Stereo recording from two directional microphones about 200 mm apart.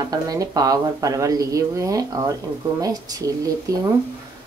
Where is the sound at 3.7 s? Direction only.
15° right (ahead or behind).